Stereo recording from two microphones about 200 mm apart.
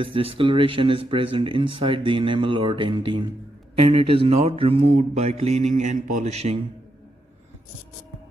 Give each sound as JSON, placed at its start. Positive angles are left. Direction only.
{"t": 0.0, "sound": "speech", "side_deg": -25}
{"t": 3.7, "sound": "mantra", "side_deg": -30}